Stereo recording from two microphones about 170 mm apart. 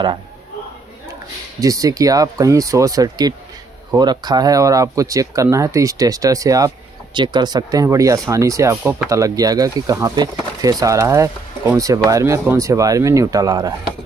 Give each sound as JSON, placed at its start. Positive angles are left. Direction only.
{"t": 1.6, "sound": "speech", "side_deg": -20}